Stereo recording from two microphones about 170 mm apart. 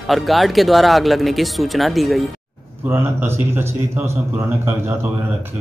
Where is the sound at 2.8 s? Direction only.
15° right (ahead or behind).